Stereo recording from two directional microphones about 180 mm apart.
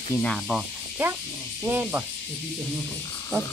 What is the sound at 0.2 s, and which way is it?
Speech, centre (ahead or behind).